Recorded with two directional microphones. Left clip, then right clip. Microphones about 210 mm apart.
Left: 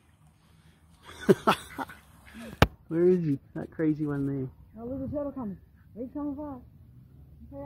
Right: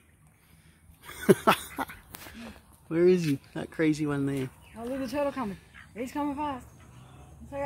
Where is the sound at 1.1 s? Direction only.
5° right (ahead or behind).